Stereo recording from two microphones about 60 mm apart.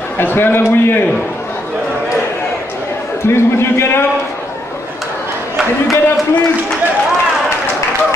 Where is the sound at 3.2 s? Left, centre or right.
Left.